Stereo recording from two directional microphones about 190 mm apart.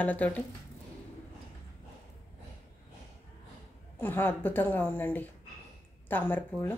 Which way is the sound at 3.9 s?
10° left (ahead or behind).